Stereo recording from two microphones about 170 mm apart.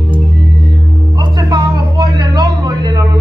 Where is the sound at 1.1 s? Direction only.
25° right (ahead or behind).